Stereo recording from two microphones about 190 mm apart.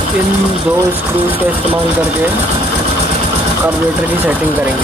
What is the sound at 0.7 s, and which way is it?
Speech, 25° right (ahead or behind).